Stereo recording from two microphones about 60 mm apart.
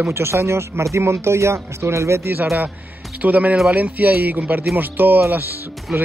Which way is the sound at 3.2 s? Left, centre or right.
Right.